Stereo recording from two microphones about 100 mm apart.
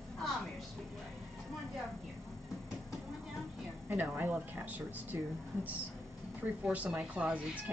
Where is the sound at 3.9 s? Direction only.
20° right (ahead or behind).